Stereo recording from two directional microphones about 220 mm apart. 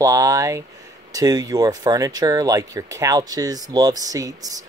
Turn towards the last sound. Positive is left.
turn(degrees=-15)  # may be behind; listen again after turning